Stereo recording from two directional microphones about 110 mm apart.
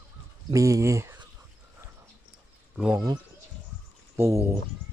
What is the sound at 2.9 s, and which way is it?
Speech, 35° right (ahead or behind).